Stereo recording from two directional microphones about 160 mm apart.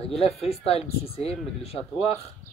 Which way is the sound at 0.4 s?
40° left (ahead or behind).